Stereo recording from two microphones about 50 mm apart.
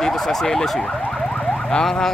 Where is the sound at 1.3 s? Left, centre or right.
Centre.